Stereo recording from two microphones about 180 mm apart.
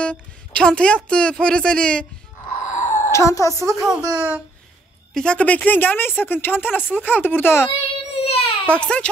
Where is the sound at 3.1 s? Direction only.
15° left (ahead or behind).